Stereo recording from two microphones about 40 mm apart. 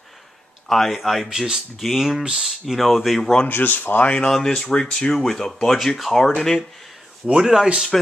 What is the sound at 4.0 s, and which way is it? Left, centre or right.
Speech, left.